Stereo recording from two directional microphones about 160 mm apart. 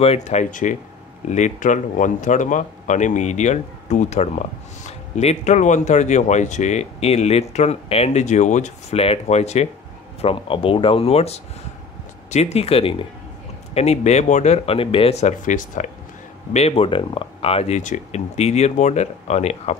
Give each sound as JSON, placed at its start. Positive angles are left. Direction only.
{"t": 0.0, "sound": "a man's voice", "side_deg": 40}
{"t": 16.5, "sound": "a man's voice", "side_deg": 40}